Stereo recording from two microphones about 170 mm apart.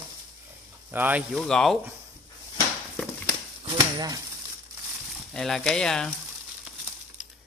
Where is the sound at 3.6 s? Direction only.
20° right (ahead or behind).